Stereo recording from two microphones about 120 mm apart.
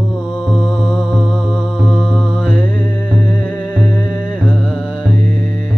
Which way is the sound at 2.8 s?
40° left (ahead or behind).